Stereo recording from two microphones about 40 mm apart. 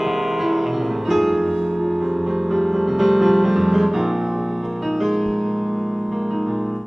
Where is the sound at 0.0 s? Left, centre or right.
Centre.